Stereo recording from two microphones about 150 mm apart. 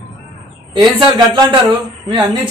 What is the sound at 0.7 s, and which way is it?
Speech, 30° right (ahead or behind).